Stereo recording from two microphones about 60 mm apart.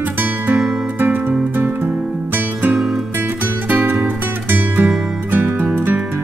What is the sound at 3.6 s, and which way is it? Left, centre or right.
Music, right.